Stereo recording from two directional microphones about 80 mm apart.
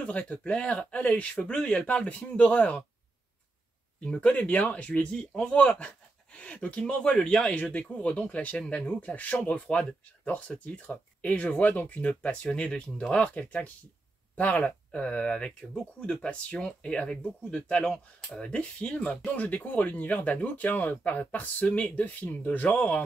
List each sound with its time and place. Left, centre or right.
0.0 s speech: centre
4.0 s speech: centre